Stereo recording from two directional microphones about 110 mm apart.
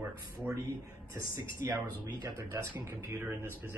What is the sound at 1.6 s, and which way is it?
Speech, 30° right (ahead or behind).